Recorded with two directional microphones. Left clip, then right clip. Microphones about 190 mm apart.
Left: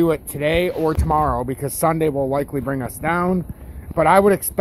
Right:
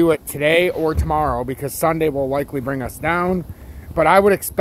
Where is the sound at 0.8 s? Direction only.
10° right (ahead or behind).